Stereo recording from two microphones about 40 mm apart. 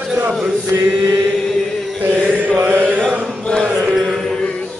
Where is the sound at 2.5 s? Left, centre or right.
Right.